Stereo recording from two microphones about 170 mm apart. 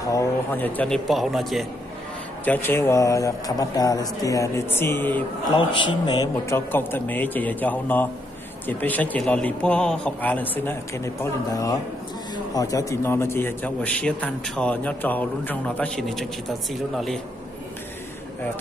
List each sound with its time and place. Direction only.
0.1 s a man's voice: 15° left (ahead or behind)
2.4 s a man's voice: 10° left (ahead or behind)
5.6 s a man's voice: 30° left (ahead or behind); by 17.2 s centre (ahead or behind)